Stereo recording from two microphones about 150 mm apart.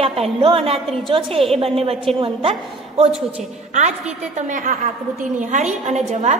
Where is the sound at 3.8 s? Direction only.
50° right (ahead or behind).